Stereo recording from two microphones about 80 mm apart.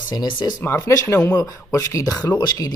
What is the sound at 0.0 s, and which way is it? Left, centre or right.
Speech, left.